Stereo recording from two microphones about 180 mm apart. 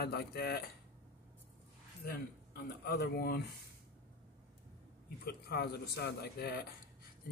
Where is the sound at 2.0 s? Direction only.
55° left (ahead or behind).